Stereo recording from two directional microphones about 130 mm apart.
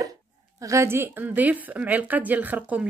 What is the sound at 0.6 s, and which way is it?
A woman's voice, 25° right (ahead or behind).